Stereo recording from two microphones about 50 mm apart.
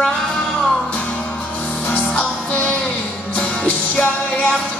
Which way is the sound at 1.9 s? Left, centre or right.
Left.